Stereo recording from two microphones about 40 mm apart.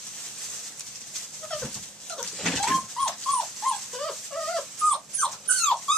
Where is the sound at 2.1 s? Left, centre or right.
Centre.